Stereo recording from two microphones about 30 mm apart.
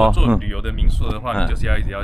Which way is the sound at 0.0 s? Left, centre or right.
Centre.